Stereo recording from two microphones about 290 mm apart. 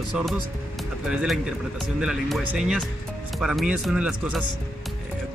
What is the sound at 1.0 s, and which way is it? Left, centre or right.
Speech, centre.